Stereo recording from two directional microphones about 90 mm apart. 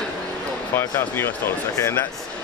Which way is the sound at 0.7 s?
25° left (ahead or behind).